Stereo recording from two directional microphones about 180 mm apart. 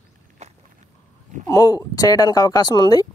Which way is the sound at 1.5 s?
20° left (ahead or behind).